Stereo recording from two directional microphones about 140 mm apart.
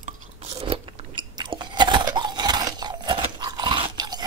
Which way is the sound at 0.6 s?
40° right (ahead or behind).